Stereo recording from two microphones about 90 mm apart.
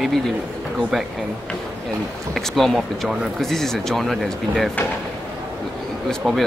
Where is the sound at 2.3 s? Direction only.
5° left (ahead or behind).